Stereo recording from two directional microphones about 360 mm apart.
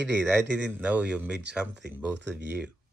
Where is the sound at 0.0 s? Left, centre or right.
Right.